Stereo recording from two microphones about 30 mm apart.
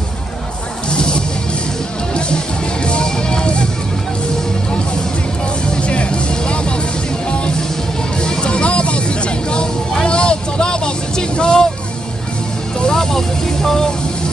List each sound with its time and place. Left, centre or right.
0.8 s music: left
5.8 s music: left
10.0 s vehicle: left
12.8 s vehicle: centre